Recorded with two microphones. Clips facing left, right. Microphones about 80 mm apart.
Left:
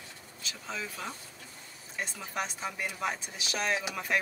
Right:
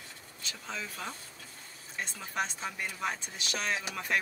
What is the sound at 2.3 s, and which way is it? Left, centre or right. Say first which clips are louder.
Speech: right 1 dB; centre.